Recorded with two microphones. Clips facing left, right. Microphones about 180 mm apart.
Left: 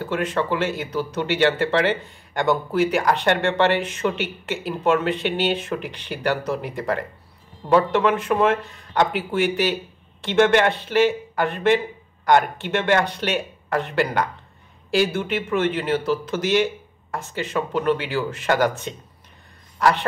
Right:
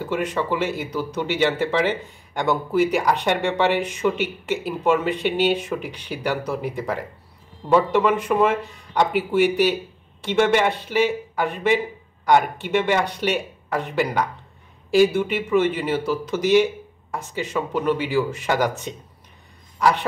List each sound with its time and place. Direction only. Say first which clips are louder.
0.0 s speech: even; 10° right (ahead or behind)
19.8 s speech: even; 10° right (ahead or behind)